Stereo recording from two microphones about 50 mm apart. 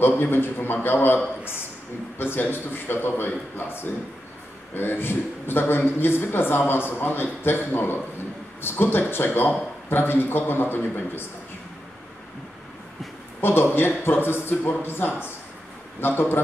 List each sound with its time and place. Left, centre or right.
0.0 s a man's voice: left
13.4 s a man's voice: left